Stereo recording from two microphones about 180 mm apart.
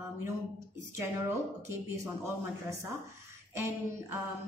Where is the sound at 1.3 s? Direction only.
15° right (ahead or behind).